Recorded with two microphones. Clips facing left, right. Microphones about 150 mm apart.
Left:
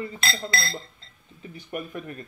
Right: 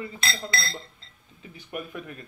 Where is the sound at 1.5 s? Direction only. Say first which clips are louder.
Left 2 dB; 5° right (ahead or behind).